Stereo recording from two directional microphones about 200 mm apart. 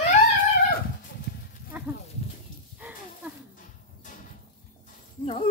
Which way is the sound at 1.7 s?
5° right (ahead or behind).